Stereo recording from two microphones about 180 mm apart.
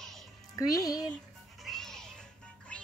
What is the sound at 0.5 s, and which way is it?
Speech, 20° left (ahead or behind).